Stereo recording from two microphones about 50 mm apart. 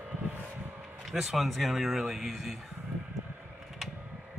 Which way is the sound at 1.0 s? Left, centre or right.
Centre.